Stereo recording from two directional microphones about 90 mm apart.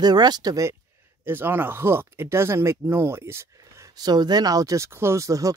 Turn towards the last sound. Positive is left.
turn(degrees=-35)  # may be behind; listen again after turning